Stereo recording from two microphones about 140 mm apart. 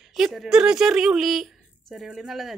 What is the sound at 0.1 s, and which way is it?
A woman's voice, centre (ahead or behind).